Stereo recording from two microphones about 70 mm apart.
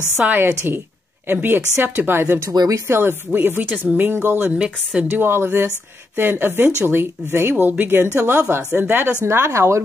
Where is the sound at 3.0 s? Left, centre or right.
Right.